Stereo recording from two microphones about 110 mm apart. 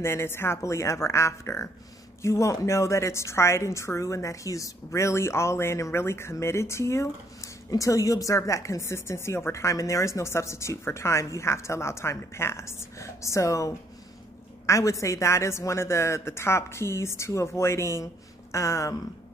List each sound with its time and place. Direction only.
0.0 s a woman's voice: 25° left (ahead or behind)